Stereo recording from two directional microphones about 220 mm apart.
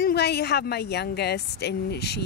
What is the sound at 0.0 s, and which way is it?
Speech, 50° left (ahead or behind).